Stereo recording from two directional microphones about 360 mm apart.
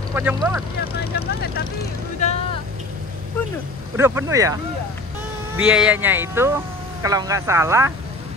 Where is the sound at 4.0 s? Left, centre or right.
Centre.